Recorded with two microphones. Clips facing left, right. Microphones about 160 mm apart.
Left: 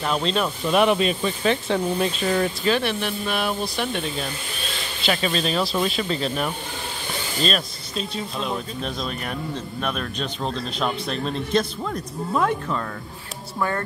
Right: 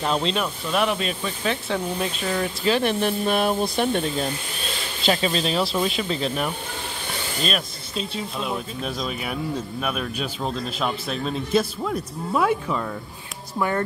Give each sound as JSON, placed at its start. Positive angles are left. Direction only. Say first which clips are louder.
{"t": 0.0, "sound": "speech", "louder": "even", "side_deg": -20}
{"t": 0.7, "sound": "speech", "louder": "left 6 dB", "side_deg": 5}
{"t": 2.8, "sound": "speech", "louder": "right 4 dB", "side_deg": -40}
{"t": 5.0, "sound": "speech", "louder": "right 1 dB", "side_deg": -25}
{"t": 8.4, "sound": "speech", "louder": "left 1 dB", "side_deg": -5}